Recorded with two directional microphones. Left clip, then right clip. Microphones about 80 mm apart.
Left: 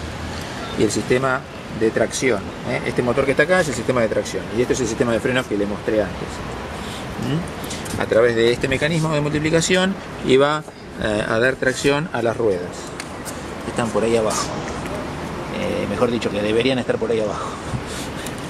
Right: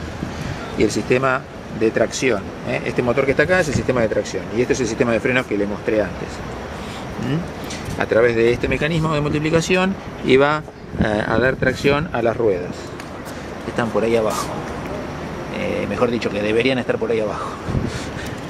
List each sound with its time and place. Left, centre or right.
0.7 s speech: centre
3.3 s speech: centre
8.0 s speech: right
10.2 s speech: centre
11.8 s speech: centre
13.7 s speech: centre
15.5 s speech: centre